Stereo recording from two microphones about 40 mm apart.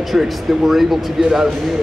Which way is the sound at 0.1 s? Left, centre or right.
Centre.